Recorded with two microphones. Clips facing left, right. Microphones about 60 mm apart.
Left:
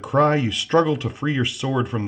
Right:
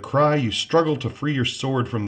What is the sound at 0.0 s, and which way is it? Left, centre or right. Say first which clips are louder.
Speech: left 1 dB; centre.